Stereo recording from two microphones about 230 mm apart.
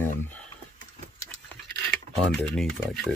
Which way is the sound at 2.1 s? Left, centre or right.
Right.